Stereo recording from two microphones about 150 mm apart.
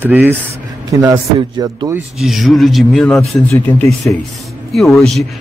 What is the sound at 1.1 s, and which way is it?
Speech, 30° right (ahead or behind).